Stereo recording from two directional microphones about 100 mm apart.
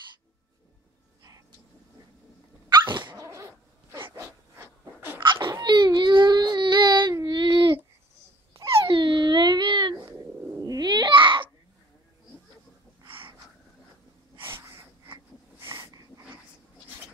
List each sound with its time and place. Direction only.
2.7 s dog: 50° right (ahead or behind)
3.2 s dog: 30° right (ahead or behind)
5.2 s babbling: 50° right (ahead or behind)
5.9 s a sound: 50° right (ahead or behind)
8.7 s dog: 55° right (ahead or behind)
10.6 s babbling: 40° right (ahead or behind)
13.0 s a sound: 60° right (ahead or behind)
14.3 s snort: 25° right (ahead or behind)
15.7 s snort: 40° right (ahead or behind)